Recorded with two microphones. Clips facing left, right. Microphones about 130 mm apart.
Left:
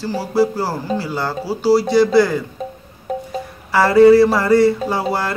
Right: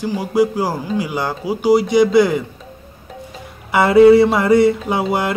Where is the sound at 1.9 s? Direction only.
20° right (ahead or behind).